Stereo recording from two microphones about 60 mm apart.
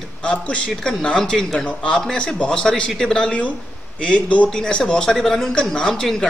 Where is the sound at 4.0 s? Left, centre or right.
Left.